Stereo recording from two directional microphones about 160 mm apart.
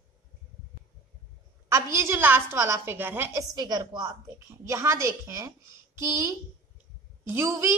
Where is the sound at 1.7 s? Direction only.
15° right (ahead or behind).